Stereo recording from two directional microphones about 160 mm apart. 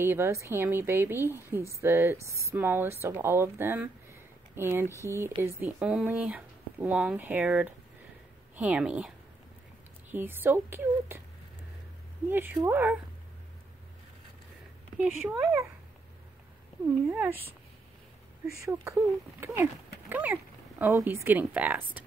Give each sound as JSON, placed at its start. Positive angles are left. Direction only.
{"t": 0.0, "sound": "a woman's voice", "side_deg": -15}
{"t": 5.6, "sound": "a woman's voice", "side_deg": -5}
{"t": 10.1, "sound": "a woman's voice", "side_deg": -15}
{"t": 12.3, "sound": "a woman's voice", "side_deg": -15}
{"t": 15.0, "sound": "a woman's voice", "side_deg": -10}
{"t": 16.8, "sound": "a woman's voice", "side_deg": -10}
{"t": 18.7, "sound": "a woman's voice", "side_deg": -15}